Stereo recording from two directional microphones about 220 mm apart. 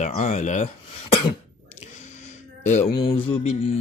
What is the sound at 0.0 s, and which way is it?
Mantra, 30° left (ahead or behind).